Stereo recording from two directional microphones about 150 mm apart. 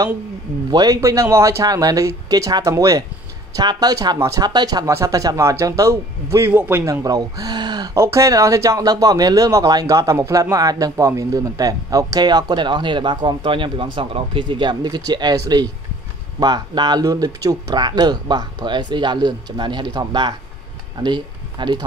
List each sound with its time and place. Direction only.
0.7 s speech: 25° right (ahead or behind)